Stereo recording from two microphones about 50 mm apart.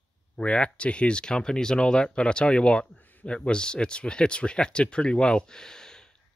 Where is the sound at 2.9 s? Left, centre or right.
Left.